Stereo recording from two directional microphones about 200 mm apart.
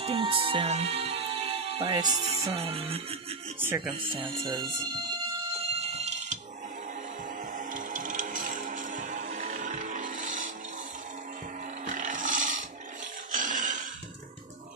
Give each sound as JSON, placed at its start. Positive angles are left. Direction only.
{"t": 0.0, "sound": "music", "side_deg": -30}
{"t": 3.5, "sound": "speech", "side_deg": -10}
{"t": 3.9, "sound": "music", "side_deg": -25}
{"t": 7.5, "sound": "music", "side_deg": -40}
{"t": 11.8, "sound": "roaring cats", "side_deg": -40}
{"t": 13.3, "sound": "a sound", "side_deg": -40}